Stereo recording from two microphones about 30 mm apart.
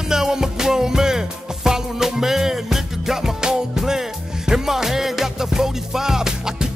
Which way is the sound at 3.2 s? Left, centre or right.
Right.